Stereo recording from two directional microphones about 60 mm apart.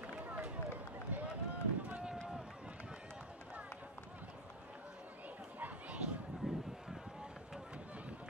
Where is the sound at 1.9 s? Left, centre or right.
Right.